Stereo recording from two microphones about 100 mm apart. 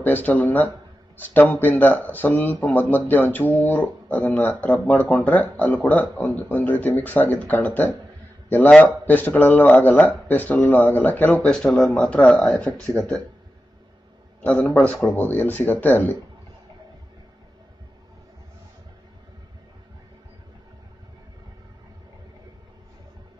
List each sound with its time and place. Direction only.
0.0 s speech: 20° left (ahead or behind)
12.0 s speech: 15° left (ahead or behind)
14.4 s speech: 15° left (ahead or behind)